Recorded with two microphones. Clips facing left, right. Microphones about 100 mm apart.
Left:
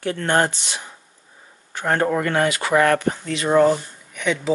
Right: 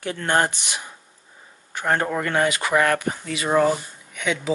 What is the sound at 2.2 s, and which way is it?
Speech, 20° left (ahead or behind).